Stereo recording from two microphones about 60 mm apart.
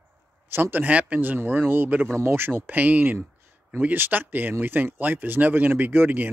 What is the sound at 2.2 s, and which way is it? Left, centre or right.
Speech, right.